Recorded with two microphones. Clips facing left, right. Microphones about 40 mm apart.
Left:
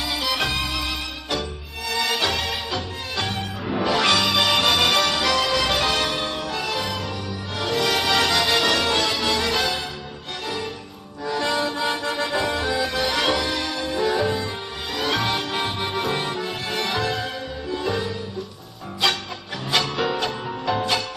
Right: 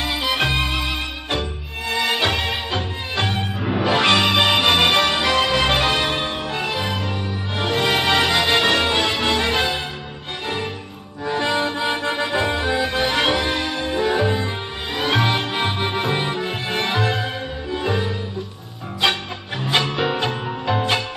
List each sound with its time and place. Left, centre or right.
0.0 s music: right
11.2 s music: right